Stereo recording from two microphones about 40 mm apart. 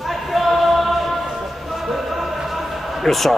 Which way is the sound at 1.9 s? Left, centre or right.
Centre.